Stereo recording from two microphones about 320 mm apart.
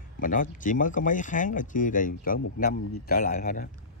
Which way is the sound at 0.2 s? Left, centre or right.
Left.